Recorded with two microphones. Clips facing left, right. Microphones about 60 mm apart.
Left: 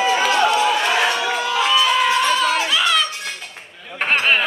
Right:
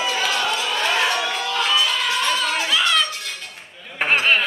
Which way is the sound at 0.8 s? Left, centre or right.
Centre.